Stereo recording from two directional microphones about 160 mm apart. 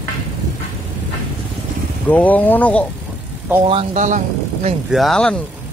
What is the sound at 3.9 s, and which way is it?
Speech, 50° right (ahead or behind).